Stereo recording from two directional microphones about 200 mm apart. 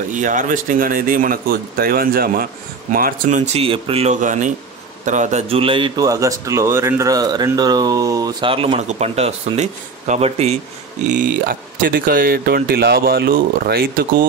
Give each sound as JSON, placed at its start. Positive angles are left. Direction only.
{"t": 0.1, "sound": "speech", "side_deg": -40}
{"t": 11.8, "sound": "speech", "side_deg": -45}